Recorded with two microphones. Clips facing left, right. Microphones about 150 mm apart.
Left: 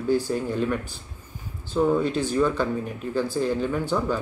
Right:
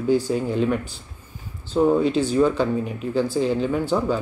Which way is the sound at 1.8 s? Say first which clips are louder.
Right 4 dB; 10° right (ahead or behind).